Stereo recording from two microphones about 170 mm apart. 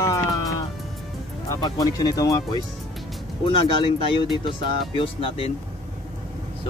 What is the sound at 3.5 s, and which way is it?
Speech, 30° left (ahead or behind).